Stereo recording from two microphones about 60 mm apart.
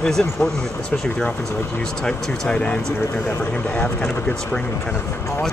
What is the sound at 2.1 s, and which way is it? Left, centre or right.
Speech, centre.